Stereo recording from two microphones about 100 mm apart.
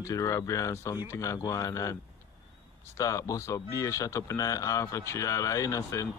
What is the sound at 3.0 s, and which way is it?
Speech, 35° left (ahead or behind).